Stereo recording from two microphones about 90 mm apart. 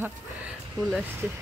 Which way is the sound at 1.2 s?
20° right (ahead or behind).